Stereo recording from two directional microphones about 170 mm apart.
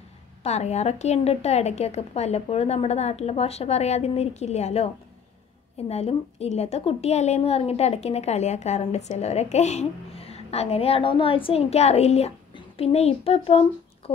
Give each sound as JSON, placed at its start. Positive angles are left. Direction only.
{"t": 0.4, "sound": "a woman's voice", "side_deg": 40}